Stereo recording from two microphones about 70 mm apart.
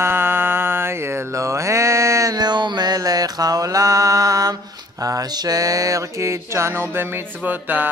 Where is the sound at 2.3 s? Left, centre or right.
Right.